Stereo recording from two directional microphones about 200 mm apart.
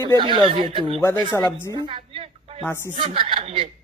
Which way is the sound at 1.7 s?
25° right (ahead or behind).